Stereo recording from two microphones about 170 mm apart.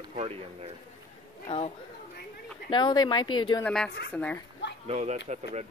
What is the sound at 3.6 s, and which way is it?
Speech, 5° left (ahead or behind).